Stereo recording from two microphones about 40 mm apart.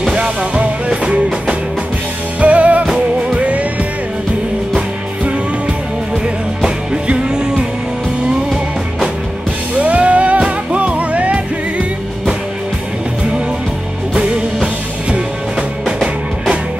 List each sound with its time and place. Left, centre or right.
0.0 s music: centre
0.4 s music: right
7.1 s music: right
9.8 s music: right